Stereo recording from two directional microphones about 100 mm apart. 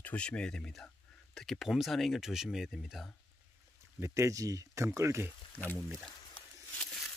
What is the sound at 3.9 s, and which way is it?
Speech, 30° right (ahead or behind).